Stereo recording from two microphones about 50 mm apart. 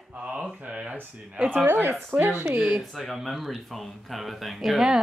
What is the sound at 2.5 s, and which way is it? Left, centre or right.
Speech, right.